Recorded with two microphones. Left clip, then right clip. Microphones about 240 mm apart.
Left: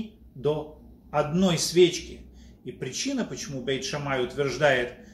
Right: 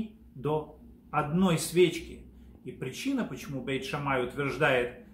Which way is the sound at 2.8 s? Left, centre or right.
Centre.